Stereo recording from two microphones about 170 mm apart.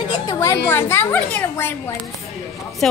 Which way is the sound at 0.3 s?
20° left (ahead or behind).